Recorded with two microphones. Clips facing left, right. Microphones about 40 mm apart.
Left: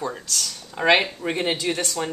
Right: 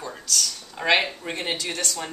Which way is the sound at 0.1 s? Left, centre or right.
Centre.